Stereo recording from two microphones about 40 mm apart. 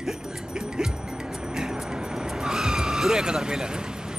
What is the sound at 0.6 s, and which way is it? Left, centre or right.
Music, centre.